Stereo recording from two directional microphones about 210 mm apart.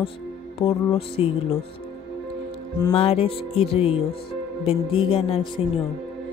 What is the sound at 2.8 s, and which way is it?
Speech, 20° left (ahead or behind).